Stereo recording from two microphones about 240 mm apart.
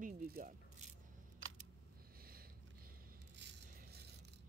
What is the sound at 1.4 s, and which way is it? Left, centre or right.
Single-lens reflex camera, right.